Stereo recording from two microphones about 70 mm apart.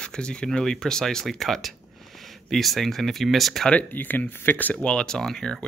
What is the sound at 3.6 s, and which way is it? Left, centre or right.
Speech, left.